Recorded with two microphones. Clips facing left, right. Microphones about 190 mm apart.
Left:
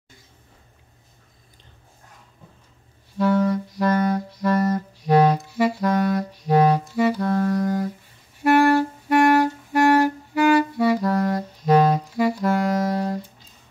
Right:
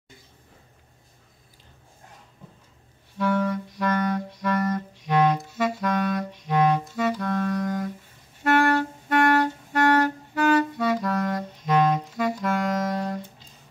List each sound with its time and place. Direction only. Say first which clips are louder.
3.2 s music: left 4 dB; 40° left (ahead or behind)
5.5 s clarinet: left 4 dB; 10° left (ahead or behind)
5.8 s music: left 4 dB; 35° left (ahead or behind)
7.2 s clarinet: left 4 dB; 35° left (ahead or behind)
8.5 s clarinet: left 4 dB; 10° left (ahead or behind)
11.0 s saxophone: left 4 dB; 35° left (ahead or behind)
12.0 s music: left 5 dB; 10° left (ahead or behind)
12.4 s saxophone: left 4 dB; 35° left (ahead or behind)